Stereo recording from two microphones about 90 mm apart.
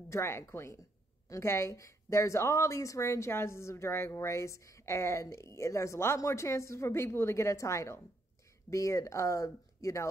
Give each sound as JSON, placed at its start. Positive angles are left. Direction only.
{"t": 0.1, "sound": "a woman's voice", "side_deg": 30}